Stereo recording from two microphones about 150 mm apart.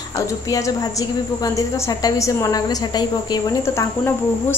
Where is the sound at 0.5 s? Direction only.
20° left (ahead or behind).